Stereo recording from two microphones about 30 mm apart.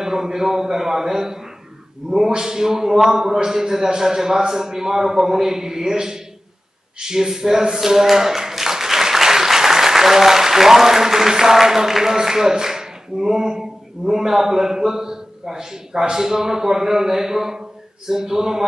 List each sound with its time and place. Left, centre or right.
0.0 s a man's voice: centre